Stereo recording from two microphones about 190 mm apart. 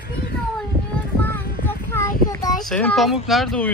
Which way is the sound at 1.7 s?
10° left (ahead or behind).